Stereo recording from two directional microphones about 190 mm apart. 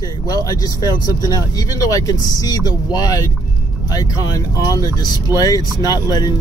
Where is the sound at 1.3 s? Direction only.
20° left (ahead or behind).